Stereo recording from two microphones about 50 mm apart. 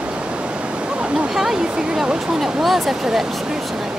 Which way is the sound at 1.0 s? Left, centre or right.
Centre.